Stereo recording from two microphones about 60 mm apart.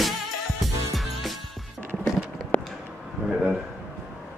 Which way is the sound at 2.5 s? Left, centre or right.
Left.